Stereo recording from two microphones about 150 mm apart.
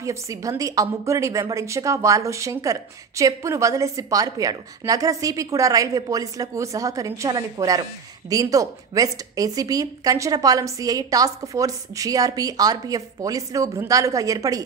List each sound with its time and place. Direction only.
0.0 s a woman's voice: 20° right (ahead or behind)